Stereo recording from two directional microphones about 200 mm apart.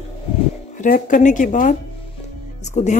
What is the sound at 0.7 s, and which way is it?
Speech, 40° left (ahead or behind).